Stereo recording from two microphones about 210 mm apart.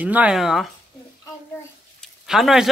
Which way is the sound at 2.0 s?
Centre (ahead or behind).